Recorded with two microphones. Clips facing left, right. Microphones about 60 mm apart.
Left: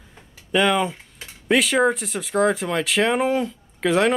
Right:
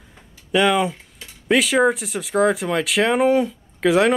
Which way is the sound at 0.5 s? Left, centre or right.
Centre.